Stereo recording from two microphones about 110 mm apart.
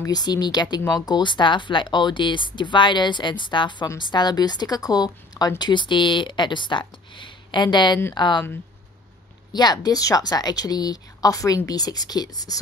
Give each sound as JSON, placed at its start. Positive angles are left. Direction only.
{"t": 0.0, "sound": "a woman's voice", "side_deg": 35}
{"t": 9.5, "sound": "a woman's voice", "side_deg": 40}